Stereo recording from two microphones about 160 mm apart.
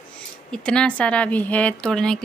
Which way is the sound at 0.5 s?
5° left (ahead or behind).